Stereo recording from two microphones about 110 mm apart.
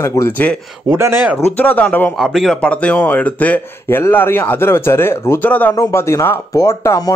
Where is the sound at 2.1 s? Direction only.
Centre (ahead or behind).